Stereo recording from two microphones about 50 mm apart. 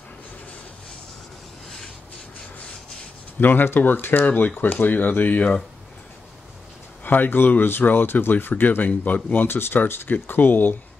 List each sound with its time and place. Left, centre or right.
3.3 s speech: left
7.1 s speech: left
9.6 s speech: left